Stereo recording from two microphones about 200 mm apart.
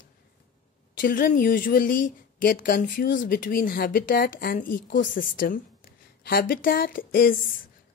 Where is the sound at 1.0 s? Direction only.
45° left (ahead or behind).